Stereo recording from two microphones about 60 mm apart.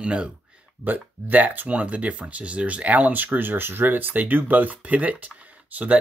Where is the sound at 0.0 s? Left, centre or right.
Centre.